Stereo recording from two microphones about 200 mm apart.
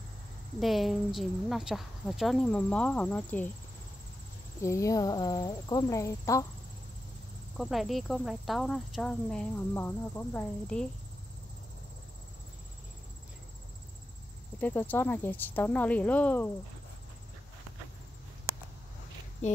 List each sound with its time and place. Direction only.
0.6 s speech: centre (ahead or behind)
4.6 s speech: 15° left (ahead or behind)
7.5 s speech: centre (ahead or behind)
14.6 s speech: 10° left (ahead or behind)